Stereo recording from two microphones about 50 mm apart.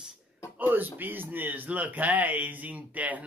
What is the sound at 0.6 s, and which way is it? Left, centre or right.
Speech, right.